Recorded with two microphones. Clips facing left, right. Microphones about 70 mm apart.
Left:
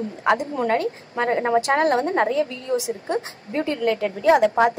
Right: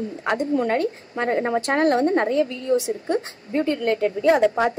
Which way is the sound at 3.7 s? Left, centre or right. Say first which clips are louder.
Right 1 dB; left.